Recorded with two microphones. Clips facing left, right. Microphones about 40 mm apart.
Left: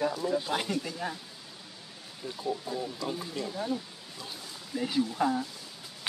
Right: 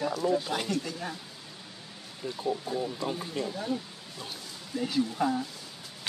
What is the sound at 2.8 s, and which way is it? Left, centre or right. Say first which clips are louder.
Speech: right 2 dB; right.